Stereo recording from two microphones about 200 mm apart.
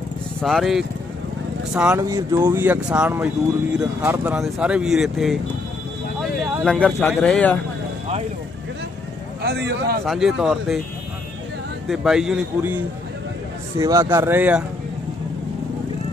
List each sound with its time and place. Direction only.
0.4 s speech: centre (ahead or behind)
2.0 s speech: 15° right (ahead or behind); by 5.4 s centre (ahead or behind)
6.4 s speech: centre (ahead or behind)
9.4 s speech: 55° right (ahead or behind)
10.0 s speech: centre (ahead or behind)
11.9 s speech: 5° right (ahead or behind)